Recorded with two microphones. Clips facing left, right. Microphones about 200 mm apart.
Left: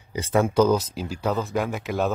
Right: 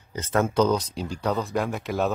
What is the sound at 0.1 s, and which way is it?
Speech, 10° left (ahead or behind).